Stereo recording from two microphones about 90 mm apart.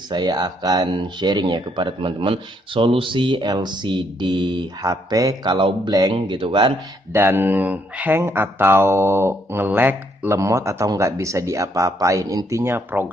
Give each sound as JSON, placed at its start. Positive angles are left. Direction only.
{"t": 0.1, "sound": "speech", "side_deg": -50}
{"t": 4.8, "sound": "a man's voice", "side_deg": -40}
{"t": 6.1, "sound": "speech", "side_deg": -75}
{"t": 7.1, "sound": "speech", "side_deg": -25}